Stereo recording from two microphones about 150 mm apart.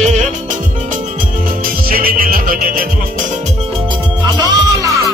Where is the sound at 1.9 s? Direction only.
75° right (ahead or behind).